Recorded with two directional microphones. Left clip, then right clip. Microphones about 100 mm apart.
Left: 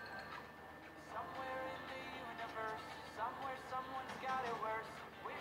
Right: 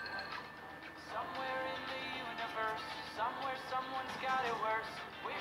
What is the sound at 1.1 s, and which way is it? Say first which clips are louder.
Music: right 5 dB; 40° right (ahead or behind).